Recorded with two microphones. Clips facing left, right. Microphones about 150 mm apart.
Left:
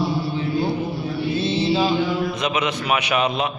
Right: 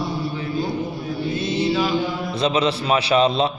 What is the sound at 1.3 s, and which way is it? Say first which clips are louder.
Mantra: left 1 dB; 30° left (ahead or behind).